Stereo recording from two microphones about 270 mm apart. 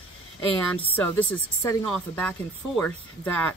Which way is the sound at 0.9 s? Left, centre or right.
Centre.